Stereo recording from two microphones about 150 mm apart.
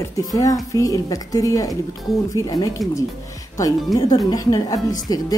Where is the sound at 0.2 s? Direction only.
25° left (ahead or behind).